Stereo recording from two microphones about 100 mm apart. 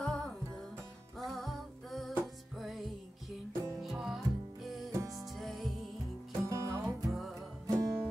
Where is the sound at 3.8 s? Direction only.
Centre (ahead or behind).